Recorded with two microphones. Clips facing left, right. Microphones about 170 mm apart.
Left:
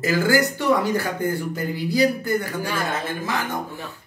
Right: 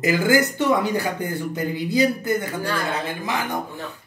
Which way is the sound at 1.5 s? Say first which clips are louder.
Right 1 dB; 20° right (ahead or behind).